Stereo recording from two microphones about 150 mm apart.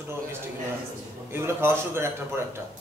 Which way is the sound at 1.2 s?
15° right (ahead or behind).